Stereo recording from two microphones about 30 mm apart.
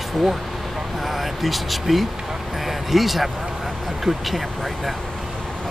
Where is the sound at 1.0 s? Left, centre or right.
Centre.